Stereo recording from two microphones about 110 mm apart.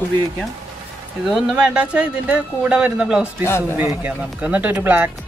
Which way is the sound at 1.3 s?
5° right (ahead or behind).